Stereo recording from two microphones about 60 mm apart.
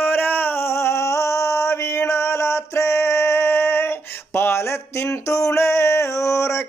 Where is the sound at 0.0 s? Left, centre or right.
Left.